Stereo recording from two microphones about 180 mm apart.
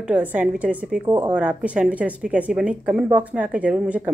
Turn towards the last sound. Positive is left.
turn(degrees=-5)  # may be behind; listen again after turning